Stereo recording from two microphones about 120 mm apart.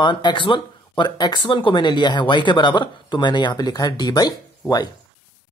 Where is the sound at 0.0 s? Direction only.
40° left (ahead or behind).